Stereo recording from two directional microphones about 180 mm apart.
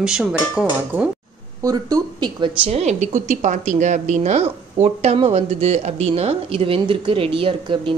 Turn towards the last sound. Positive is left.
turn(degrees=-30)  # may be behind; listen again after turning